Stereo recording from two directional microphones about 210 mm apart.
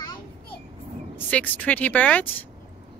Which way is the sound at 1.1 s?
10° left (ahead or behind).